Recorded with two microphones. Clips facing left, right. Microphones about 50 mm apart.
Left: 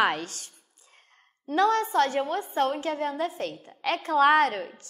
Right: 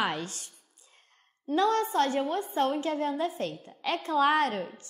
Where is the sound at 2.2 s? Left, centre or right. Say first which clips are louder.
Left 2 dB; left.